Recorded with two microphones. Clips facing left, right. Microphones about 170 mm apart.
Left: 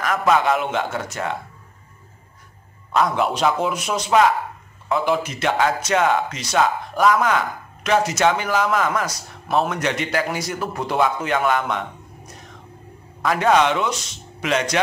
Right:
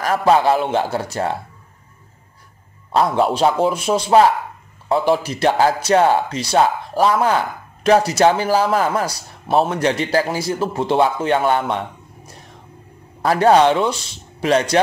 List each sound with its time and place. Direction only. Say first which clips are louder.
0.0 s speech: right 4 dB; 30° right (ahead or behind)
2.9 s speech: right 3 dB; 30° right (ahead or behind)
13.2 s speech: right 4 dB; 35° right (ahead or behind)